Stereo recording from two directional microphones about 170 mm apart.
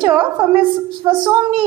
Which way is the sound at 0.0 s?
10° right (ahead or behind).